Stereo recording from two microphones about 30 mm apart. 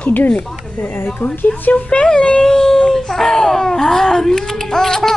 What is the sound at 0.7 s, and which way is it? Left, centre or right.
Speech, left.